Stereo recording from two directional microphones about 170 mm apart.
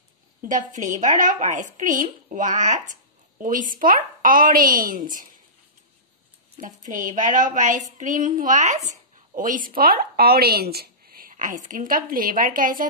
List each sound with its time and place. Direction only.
0.5 s speech: 50° right (ahead or behind)
6.9 s speech: 50° right (ahead or behind)